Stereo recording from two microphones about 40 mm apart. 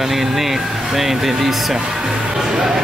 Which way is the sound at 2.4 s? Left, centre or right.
Centre.